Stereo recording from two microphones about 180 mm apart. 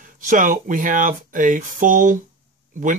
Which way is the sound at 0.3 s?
50° right (ahead or behind).